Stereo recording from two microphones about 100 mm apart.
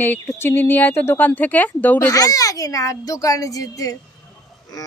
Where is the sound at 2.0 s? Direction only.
40° left (ahead or behind).